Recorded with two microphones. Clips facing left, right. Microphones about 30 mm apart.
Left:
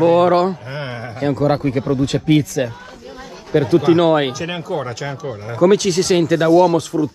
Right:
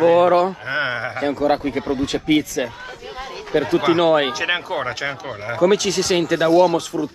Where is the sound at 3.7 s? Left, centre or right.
Right.